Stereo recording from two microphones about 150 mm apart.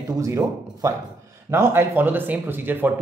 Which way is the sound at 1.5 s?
15° right (ahead or behind).